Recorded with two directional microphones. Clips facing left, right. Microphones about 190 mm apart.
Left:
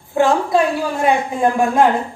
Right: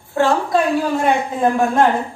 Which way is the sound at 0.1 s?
15° left (ahead or behind).